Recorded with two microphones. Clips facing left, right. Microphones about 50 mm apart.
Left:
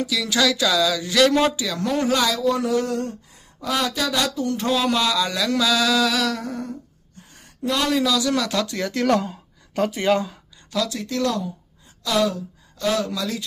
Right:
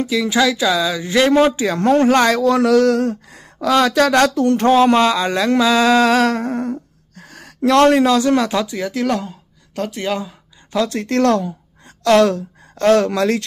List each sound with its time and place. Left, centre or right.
0.0 s speech: right
1.6 s speech: right
7.2 s speech: right
8.6 s speech: centre
10.9 s speech: right